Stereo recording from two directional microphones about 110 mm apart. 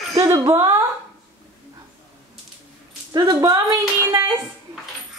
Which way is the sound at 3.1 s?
35° right (ahead or behind).